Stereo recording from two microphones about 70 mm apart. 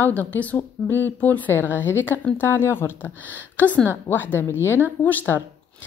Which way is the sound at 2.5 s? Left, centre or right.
Left.